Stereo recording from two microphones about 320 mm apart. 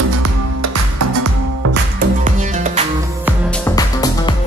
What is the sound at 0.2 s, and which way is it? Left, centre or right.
Music, right.